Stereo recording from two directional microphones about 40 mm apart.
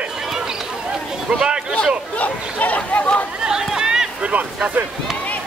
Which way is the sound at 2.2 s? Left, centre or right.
Left.